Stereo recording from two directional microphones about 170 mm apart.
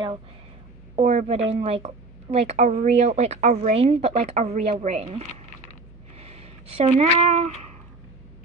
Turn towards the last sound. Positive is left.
turn(degrees=-35)  # may be behind; listen again after turning